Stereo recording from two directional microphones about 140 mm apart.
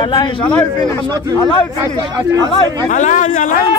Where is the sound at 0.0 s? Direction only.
35° left (ahead or behind).